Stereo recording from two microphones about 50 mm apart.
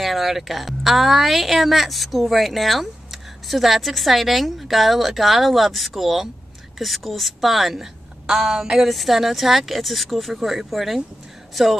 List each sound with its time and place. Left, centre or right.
0.0 s a woman's voice: centre